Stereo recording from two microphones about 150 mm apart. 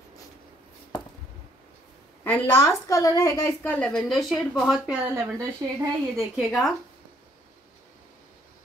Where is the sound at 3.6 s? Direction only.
10° left (ahead or behind); by 6.4 s 15° right (ahead or behind).